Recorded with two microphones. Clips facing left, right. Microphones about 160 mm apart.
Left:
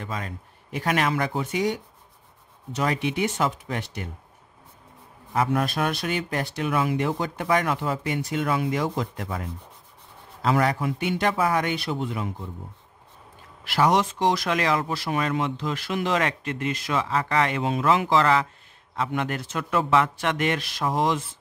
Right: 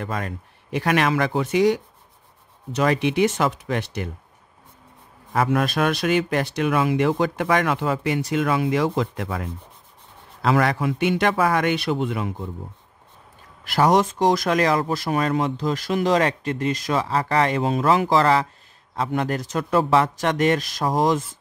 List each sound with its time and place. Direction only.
0.0 s speech: 60° right (ahead or behind); by 4.1 s 85° right
5.3 s a man's voice: 90° right; by 12.4 s 75° right (ahead or behind)
13.7 s speech: 45° right (ahead or behind)